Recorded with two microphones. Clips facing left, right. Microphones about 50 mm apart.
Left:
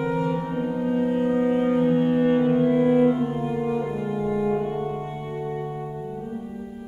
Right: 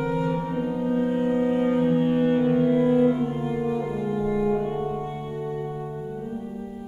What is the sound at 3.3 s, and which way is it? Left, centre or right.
Music, centre.